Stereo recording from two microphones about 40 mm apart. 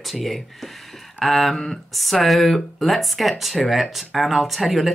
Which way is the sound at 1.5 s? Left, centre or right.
Centre.